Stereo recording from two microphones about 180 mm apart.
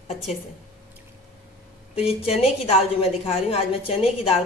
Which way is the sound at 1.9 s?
35° left (ahead or behind).